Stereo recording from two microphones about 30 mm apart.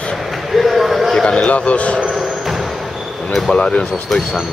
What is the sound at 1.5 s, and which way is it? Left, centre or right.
Speech, left.